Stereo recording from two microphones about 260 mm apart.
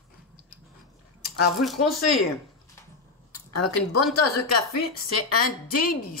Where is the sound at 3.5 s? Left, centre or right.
Left.